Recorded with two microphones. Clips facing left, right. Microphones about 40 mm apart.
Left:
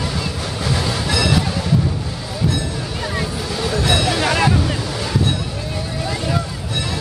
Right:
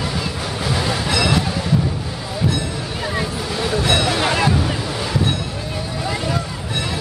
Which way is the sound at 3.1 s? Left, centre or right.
Centre.